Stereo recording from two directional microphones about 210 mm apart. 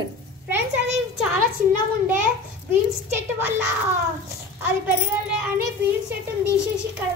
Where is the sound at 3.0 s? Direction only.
10° right (ahead or behind).